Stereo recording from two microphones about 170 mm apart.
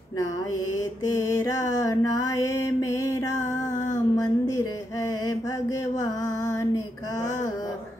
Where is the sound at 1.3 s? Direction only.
20° left (ahead or behind).